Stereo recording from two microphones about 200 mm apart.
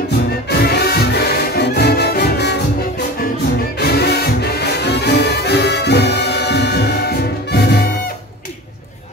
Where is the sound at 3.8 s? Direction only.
55° left (ahead or behind).